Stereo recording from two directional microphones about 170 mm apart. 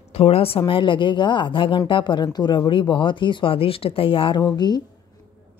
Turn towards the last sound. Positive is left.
turn(degrees=25)  # may be behind; listen again after turning